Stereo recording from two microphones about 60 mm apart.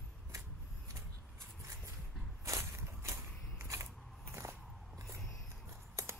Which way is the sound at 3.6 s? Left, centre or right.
Right.